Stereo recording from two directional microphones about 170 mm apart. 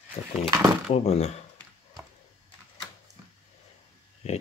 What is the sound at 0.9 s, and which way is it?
Speech, 40° left (ahead or behind).